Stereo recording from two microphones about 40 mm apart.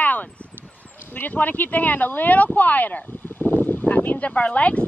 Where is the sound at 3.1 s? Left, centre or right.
Left.